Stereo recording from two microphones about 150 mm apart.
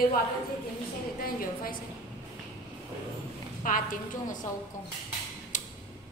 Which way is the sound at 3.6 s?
60° left (ahead or behind).